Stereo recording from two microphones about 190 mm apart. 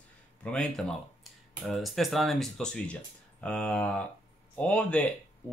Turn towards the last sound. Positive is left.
turn(degrees=5)  # may be behind; listen again after turning